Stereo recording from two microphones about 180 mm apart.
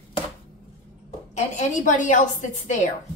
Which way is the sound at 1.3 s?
45° left (ahead or behind).